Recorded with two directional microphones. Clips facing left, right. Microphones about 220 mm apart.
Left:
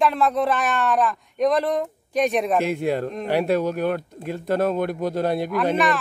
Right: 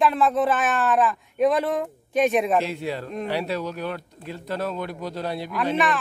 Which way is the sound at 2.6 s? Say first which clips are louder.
Left 5 dB; 50° left (ahead or behind).